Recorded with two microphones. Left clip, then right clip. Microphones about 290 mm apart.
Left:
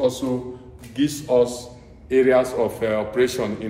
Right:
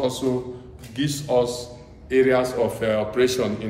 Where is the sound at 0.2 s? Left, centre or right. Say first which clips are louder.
Right 1 dB; centre.